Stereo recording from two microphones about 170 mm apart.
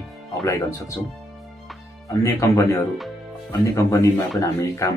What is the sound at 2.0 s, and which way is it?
A man's voice, 20° left (ahead or behind).